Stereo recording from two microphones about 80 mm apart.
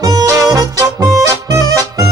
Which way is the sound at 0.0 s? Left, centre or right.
Right.